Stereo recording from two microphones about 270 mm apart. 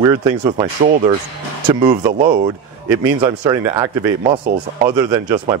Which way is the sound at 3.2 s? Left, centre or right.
Centre.